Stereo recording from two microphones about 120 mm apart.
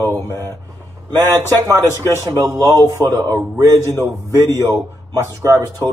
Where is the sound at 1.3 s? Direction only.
30° right (ahead or behind).